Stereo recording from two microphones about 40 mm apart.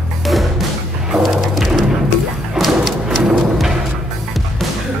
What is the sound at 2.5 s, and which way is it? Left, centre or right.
Music, centre.